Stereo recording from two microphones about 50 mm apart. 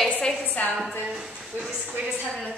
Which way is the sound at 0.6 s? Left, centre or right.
Left.